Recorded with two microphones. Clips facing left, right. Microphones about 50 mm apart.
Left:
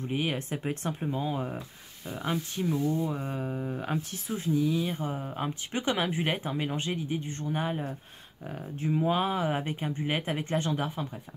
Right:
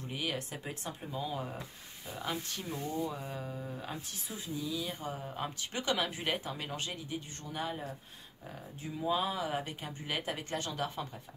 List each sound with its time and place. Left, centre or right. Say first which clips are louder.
0.1 s speech: left 6 dB; left
0.7 s speech: left 9 dB; left
4.8 s speech: left 6 dB; left